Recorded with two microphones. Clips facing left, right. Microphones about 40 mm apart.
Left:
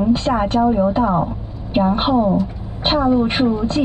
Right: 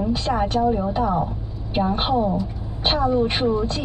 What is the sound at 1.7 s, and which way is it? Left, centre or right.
Speech, left.